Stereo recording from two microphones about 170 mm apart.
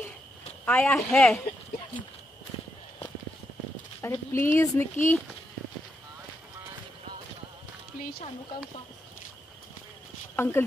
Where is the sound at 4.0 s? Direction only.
15° left (ahead or behind).